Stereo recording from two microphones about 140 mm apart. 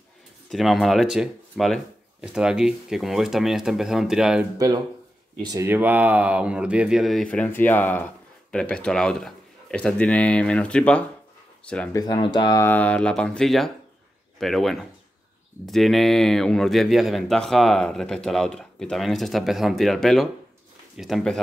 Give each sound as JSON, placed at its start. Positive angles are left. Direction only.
{"t": 0.5, "sound": "speech", "side_deg": 0}
{"t": 5.4, "sound": "speech", "side_deg": -25}
{"t": 5.7, "sound": "speech", "side_deg": -10}
{"t": 11.9, "sound": "speech", "side_deg": 30}
{"t": 12.6, "sound": "speech", "side_deg": 10}